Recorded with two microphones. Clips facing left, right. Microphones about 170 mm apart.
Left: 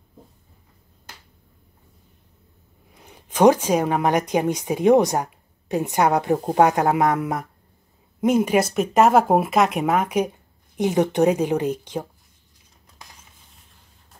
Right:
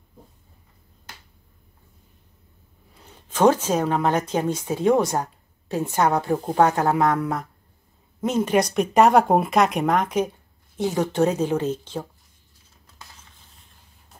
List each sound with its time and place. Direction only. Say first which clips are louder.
2.9 s a woman's voice: left 1 dB; 15° left (ahead or behind)